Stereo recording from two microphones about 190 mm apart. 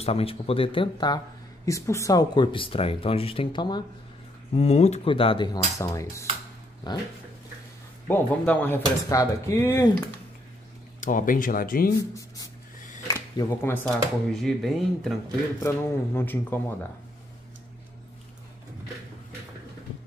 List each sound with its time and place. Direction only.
0.0 s speech: 30° left (ahead or behind)
4.6 s speech: 35° left (ahead or behind)
8.1 s speech: 10° left (ahead or behind)
11.0 s speech: 45° left (ahead or behind)
12.0 s speech: 20° left (ahead or behind)
14.3 s speech: centre (ahead or behind)
15.6 s speech: 10° left (ahead or behind)